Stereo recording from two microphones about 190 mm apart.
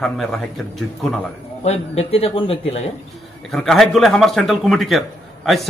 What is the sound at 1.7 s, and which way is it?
A man's voice, 30° left (ahead or behind).